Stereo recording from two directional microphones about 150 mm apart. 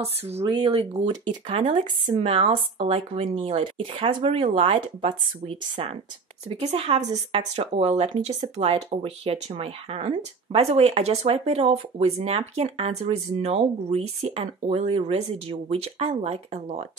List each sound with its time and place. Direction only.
0.0 s speech: 40° right (ahead or behind)